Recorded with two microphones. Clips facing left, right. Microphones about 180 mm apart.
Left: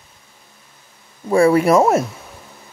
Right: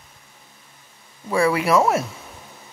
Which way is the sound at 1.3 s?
45° left (ahead or behind).